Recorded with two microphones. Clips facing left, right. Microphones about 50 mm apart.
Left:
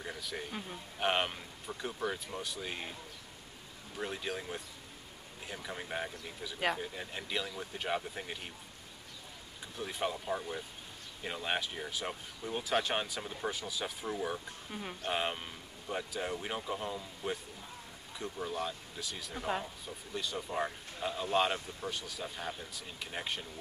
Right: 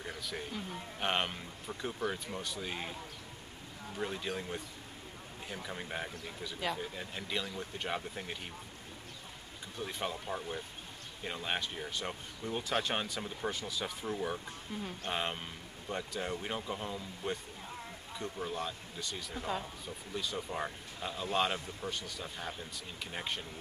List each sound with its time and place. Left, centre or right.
0.0 s a sound: centre
0.9 s speech: centre
3.9 s speech: centre
9.8 s speech: centre
14.7 s speech: left
15.0 s speech: centre